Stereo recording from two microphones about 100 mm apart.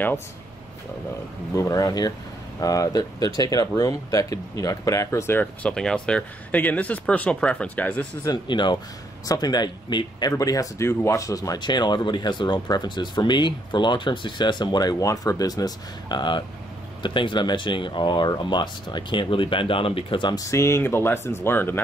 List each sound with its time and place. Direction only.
1.5 s speech: 35° left (ahead or behind); by 8.1 s 15° left (ahead or behind)
8.5 s speech: 50° left (ahead or behind)
10.3 s speech: 35° left (ahead or behind); by 20.3 s 55° left (ahead or behind)
20.3 s speech: 30° left (ahead or behind)